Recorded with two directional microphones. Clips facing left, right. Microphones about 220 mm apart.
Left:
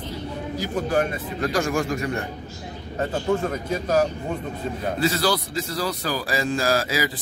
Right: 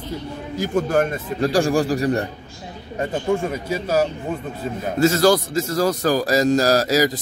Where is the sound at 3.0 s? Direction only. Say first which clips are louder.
Right 2 dB; 10° right (ahead or behind).